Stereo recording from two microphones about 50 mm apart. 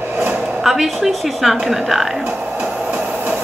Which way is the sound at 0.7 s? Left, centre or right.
Centre.